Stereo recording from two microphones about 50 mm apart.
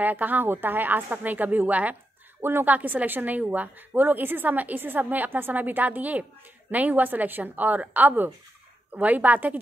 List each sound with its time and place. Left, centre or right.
0.0 s a woman's voice: right